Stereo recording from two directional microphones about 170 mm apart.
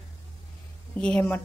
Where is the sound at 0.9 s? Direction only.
5° left (ahead or behind).